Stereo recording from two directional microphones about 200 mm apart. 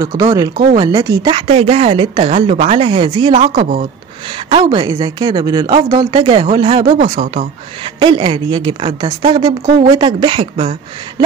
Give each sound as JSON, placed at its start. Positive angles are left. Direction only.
{"t": 0.0, "sound": "speech", "side_deg": -20}